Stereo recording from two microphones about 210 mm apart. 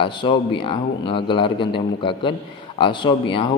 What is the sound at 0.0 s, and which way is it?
Speech, 25° left (ahead or behind).